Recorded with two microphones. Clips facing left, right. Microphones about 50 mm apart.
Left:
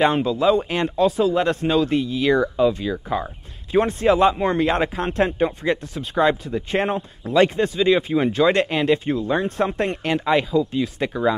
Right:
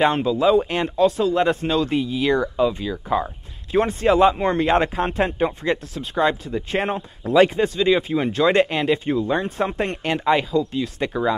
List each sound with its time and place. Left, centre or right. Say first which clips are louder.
0.0 s speech: even; centre